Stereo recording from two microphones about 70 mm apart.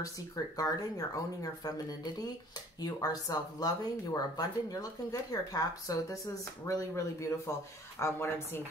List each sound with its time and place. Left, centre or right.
0.6 s speech: left
6.7 s speech: left
8.0 s speech: left